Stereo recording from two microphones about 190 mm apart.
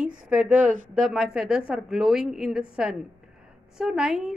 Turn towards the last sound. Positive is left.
turn(degrees=0)  # may be behind; listen again after turning